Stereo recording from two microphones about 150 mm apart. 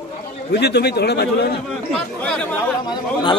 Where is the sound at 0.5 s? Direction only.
90° left.